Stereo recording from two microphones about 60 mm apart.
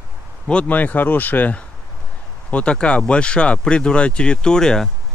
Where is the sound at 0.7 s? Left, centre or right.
Left.